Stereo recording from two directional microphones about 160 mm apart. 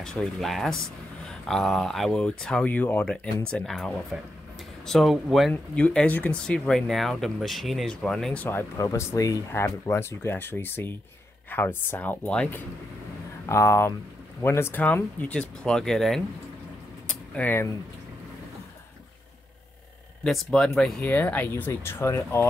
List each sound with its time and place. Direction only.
0.0 s speech: 5° left (ahead or behind)
17.1 s a sound: 10° left (ahead or behind)
20.2 s speech: 5° left (ahead or behind)